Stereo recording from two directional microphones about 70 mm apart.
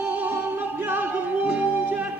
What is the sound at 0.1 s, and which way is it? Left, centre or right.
Music, right.